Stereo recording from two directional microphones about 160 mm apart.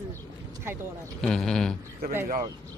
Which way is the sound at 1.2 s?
5° left (ahead or behind).